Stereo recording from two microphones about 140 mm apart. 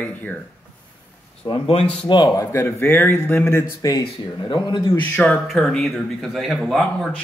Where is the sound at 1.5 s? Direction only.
40° left (ahead or behind).